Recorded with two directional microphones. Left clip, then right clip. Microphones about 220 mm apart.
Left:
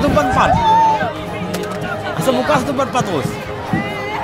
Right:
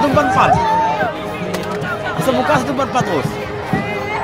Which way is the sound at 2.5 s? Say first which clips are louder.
Even; 35° left (ahead or behind).